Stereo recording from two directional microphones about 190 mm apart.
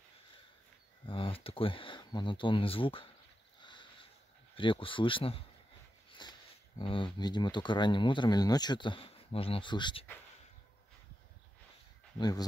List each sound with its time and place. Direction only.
1.0 s speech: 30° left (ahead or behind)
3.6 s a sound: 25° left (ahead or behind)
4.6 s speech: 25° left (ahead or behind)
6.2 s a sound: 25° left (ahead or behind)
6.8 s speech: 25° left (ahead or behind)
12.2 s speech: 20° left (ahead or behind)